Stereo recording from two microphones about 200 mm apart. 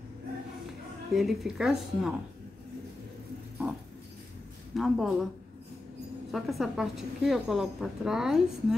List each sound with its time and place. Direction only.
1.1 s a woman's voice: centre (ahead or behind)
4.7 s a woman's voice: centre (ahead or behind)
6.3 s a woman's voice: centre (ahead or behind)